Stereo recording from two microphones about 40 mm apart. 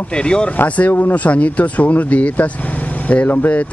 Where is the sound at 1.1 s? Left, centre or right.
Left.